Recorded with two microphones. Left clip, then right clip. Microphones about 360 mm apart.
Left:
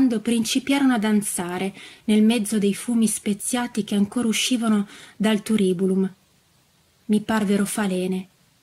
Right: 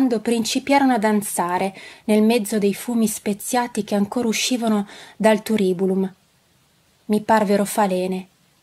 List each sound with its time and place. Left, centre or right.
0.0 s speech: centre